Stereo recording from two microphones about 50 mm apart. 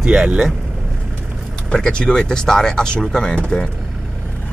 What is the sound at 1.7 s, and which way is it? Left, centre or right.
Speech, centre.